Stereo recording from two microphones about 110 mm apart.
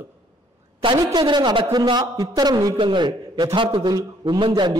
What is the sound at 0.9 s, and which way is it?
A man's voice, 40° right (ahead or behind).